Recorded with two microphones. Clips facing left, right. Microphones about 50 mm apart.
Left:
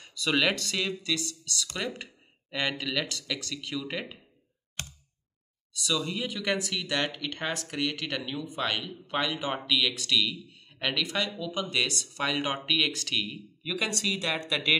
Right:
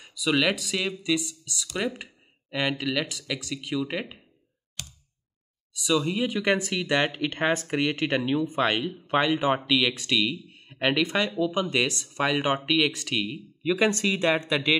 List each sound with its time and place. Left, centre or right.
0.0 s speech: centre
4.8 s a sound: left
5.7 s speech: centre
13.7 s speech: right